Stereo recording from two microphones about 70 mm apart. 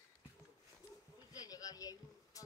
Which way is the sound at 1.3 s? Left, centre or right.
Left.